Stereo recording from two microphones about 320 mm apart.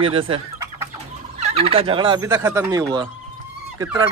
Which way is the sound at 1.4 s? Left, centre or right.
Centre.